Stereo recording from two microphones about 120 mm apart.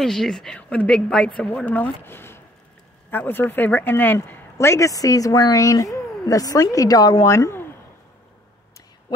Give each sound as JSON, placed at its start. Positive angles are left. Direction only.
{"t": 0.0, "sound": "a woman's voice", "side_deg": 5}